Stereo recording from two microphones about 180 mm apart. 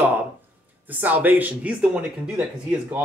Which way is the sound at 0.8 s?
10° right (ahead or behind).